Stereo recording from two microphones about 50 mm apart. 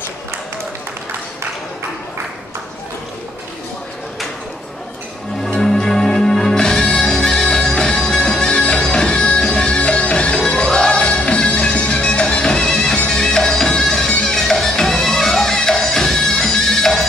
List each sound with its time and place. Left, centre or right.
5.5 s music: centre